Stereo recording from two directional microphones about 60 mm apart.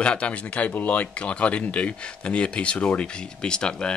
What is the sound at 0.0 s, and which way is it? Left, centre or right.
Speech, centre.